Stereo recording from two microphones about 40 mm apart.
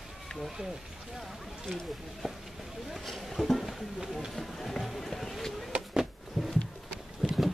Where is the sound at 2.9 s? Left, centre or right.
Centre.